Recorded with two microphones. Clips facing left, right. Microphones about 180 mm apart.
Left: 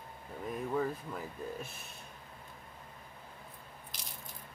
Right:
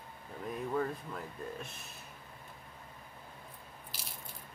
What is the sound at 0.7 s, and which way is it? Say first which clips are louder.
Speech: left 1 dB; 5° left (ahead or behind).